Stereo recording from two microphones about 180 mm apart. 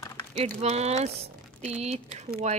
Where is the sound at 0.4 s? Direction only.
35° right (ahead or behind).